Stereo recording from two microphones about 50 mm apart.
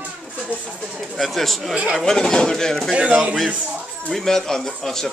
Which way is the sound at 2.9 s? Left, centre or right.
Right.